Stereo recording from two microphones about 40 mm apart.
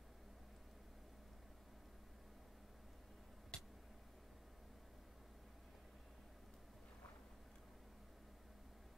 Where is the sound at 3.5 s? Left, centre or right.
Left.